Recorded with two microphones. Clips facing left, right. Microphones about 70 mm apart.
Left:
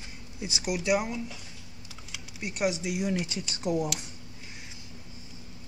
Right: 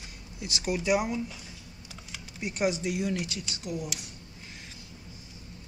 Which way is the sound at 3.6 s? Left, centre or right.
Left.